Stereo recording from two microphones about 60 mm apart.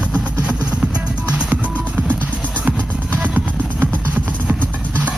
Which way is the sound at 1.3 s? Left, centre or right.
Centre.